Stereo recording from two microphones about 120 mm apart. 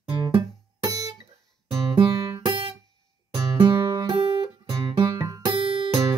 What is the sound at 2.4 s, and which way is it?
Music, 40° right (ahead or behind).